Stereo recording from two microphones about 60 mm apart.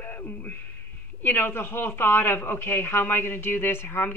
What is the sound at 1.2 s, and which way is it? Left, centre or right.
A man's voice, left.